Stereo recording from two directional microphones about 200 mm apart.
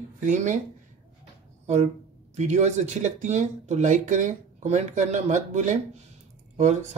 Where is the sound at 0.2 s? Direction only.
40° right (ahead or behind).